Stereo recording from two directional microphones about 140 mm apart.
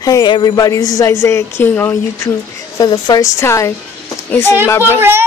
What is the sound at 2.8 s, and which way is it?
Speech, 30° left (ahead or behind).